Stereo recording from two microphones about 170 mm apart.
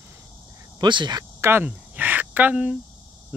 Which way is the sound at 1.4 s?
10° right (ahead or behind).